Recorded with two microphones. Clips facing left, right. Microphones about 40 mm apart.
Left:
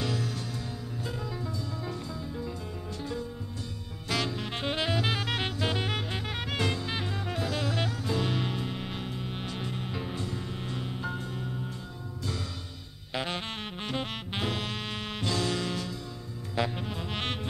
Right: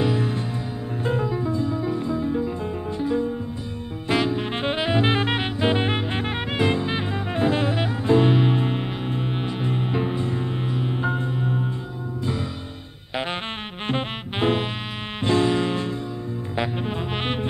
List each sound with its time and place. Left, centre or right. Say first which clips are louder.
0.0 s music: right 9 dB; right
13.1 s saxophone: right 5 dB; right
13.8 s music: right 8 dB; right